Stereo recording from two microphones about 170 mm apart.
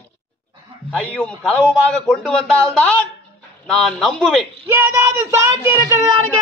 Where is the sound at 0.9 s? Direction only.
5° left (ahead or behind).